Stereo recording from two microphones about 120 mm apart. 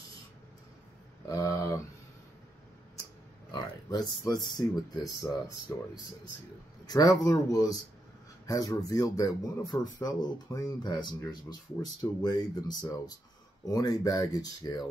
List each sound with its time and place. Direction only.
1.2 s speech: 30° left (ahead or behind)
3.5 s speech: 35° left (ahead or behind)
6.9 s speech: 30° left (ahead or behind)